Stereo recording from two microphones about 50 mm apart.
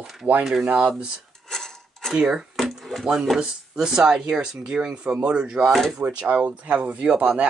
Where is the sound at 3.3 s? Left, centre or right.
Centre.